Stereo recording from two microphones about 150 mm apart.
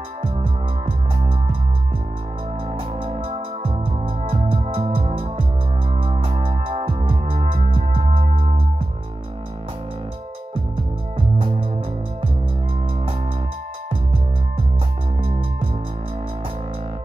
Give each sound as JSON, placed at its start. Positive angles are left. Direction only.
{"t": 0.2, "sound": "music", "side_deg": -35}
{"t": 3.0, "sound": "music", "side_deg": -40}
{"t": 11.1, "sound": "music", "side_deg": -35}